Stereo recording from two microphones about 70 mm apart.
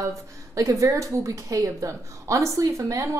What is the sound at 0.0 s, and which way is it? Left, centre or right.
A woman's voice, right.